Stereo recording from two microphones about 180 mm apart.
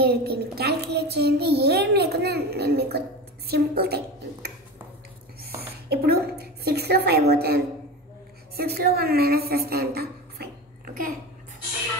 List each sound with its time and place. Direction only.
0.0 s a child's voice: 60° right (ahead or behind)